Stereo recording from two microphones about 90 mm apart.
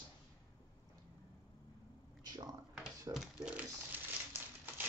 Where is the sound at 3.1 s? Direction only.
5° right (ahead or behind).